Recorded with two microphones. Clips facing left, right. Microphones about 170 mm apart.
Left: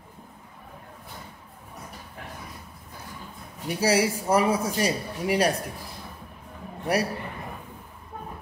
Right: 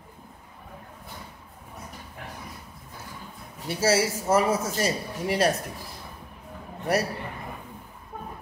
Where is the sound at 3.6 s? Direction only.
15° left (ahead or behind).